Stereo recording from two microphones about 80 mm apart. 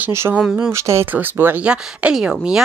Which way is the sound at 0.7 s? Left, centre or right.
Right.